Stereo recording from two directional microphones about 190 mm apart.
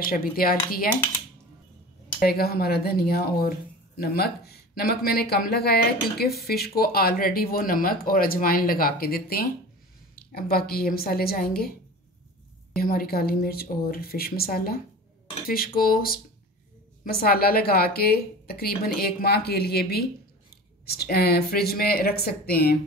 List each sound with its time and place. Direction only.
0.0 s speech: 50° left (ahead or behind)
2.1 s speech: 55° left (ahead or behind)
12.7 s speech: 50° left (ahead or behind)